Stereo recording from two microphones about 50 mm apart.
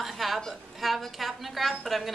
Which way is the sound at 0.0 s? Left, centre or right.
Centre.